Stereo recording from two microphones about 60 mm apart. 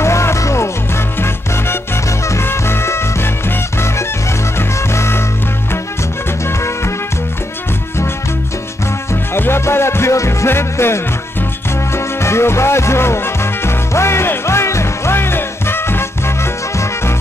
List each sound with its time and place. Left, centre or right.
0.0 s music: left
2.2 s music: left
9.3 s music: left